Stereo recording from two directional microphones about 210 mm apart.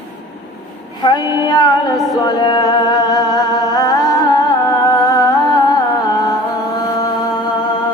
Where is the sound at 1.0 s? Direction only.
20° left (ahead or behind).